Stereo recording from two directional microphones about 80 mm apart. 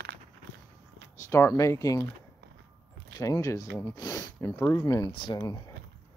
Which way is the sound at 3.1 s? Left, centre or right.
Left.